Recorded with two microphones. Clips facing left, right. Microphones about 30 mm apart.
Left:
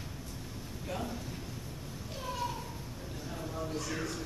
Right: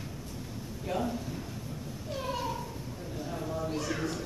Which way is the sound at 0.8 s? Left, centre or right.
Centre.